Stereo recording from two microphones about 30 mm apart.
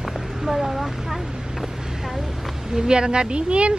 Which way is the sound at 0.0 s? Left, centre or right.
Centre.